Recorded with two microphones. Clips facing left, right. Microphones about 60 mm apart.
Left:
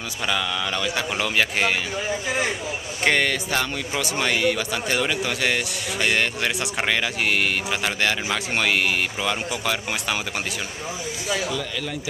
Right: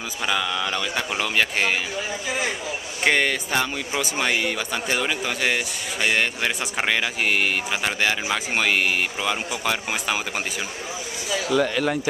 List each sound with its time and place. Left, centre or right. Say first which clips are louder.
0.3 s a man's voice: right 1 dB; centre
3.0 s a man's voice: even; centre
11.4 s speech: right 7 dB; right